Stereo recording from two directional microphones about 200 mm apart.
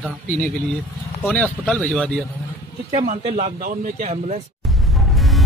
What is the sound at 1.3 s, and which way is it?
Speech, 5° left (ahead or behind).